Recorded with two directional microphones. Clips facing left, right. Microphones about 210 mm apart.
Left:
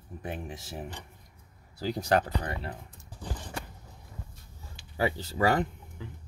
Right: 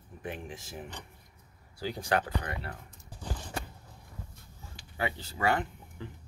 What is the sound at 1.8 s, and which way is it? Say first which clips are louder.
Speech: left 4 dB; 40° left (ahead or behind).